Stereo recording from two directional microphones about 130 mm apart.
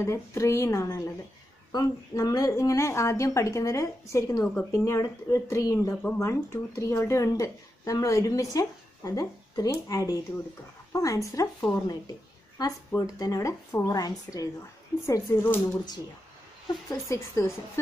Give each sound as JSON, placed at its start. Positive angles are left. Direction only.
{"t": 0.0, "sound": "speech", "side_deg": 20}